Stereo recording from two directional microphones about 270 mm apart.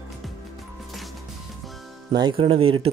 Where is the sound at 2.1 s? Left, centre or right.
Centre.